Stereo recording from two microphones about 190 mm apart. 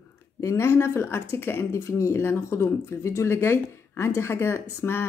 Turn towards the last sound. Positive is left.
turn(degrees=10)  # may be behind; listen again after turning